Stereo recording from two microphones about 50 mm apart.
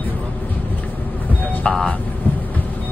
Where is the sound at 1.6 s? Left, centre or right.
Centre.